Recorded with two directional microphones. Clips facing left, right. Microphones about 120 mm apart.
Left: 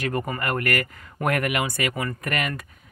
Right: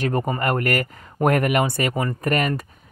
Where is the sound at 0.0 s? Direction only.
30° right (ahead or behind).